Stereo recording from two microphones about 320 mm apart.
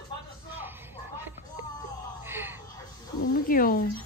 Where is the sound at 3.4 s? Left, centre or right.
Left.